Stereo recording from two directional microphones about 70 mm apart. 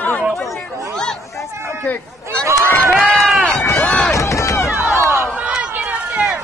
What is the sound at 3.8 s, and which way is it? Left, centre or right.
Chop, centre.